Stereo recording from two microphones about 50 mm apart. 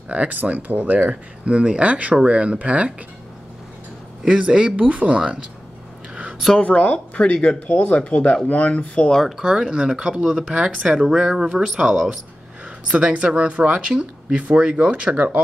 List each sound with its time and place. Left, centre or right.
0.1 s speech: right
1.4 s speech: right
4.3 s speech: centre
6.6 s speech: left
9.4 s speech: centre
12.9 s speech: right